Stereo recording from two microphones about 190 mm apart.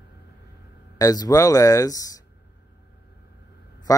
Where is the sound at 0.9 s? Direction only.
20° left (ahead or behind).